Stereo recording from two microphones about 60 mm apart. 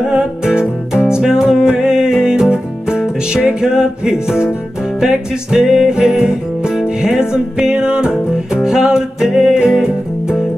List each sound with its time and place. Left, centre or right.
0.0 s music: centre